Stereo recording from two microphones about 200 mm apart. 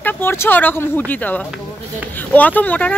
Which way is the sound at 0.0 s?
10° left (ahead or behind).